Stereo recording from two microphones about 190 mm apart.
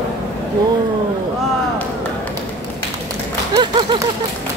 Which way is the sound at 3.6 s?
25° right (ahead or behind).